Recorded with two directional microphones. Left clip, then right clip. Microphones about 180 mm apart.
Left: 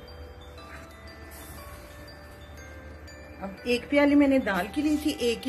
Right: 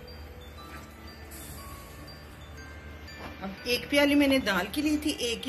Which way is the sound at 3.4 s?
50° left (ahead or behind).